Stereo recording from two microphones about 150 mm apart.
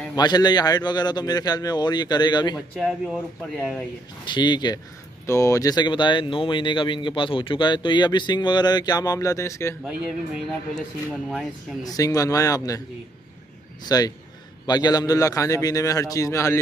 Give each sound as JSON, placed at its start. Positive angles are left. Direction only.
{"t": 0.1, "sound": "speech", "side_deg": 25}
{"t": 2.5, "sound": "speech", "side_deg": -5}
{"t": 4.2, "sound": "speech", "side_deg": 30}
{"t": 9.8, "sound": "speech", "side_deg": -5}
{"t": 11.8, "sound": "speech", "side_deg": 25}
{"t": 13.8, "sound": "speech", "side_deg": 25}